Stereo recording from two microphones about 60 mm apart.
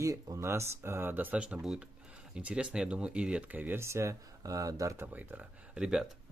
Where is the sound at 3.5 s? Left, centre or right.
Right.